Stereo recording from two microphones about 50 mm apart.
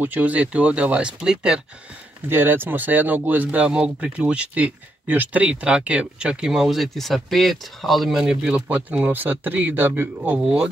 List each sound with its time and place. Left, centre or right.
0.0 s speech: right; by 1.6 s centre
2.2 s speech: right
3.6 s speech: right; by 8.2 s centre
8.2 s speech: centre
8.6 s speech: right
10.3 s speech: right